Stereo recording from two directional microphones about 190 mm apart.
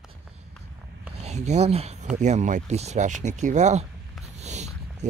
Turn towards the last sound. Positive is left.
turn(degrees=-35)  # may be behind; listen again after turning